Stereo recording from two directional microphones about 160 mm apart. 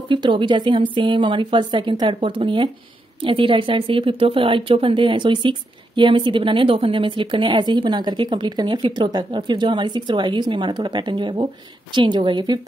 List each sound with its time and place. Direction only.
0.1 s a woman's voice: 30° right (ahead or behind)